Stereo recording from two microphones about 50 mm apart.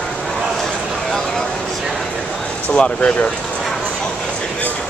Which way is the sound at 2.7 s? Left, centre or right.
Left.